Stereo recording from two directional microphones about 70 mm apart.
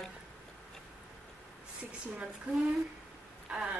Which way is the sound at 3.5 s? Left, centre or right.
Centre.